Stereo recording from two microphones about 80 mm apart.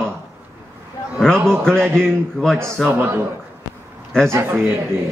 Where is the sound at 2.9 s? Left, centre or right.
Right.